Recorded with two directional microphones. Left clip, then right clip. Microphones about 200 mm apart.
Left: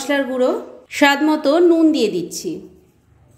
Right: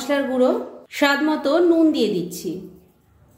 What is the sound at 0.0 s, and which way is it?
A woman's voice, 25° left (ahead or behind).